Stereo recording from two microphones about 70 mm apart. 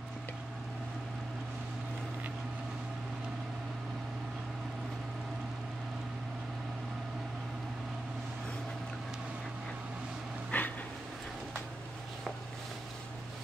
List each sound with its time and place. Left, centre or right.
10.5 s dog: left